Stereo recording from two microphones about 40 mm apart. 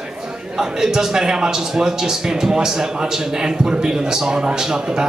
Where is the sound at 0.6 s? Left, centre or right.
Centre.